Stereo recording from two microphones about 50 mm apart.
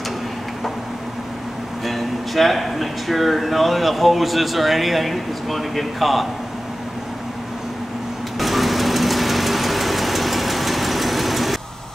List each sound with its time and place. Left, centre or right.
1.9 s speech: centre
8.4 s engine: centre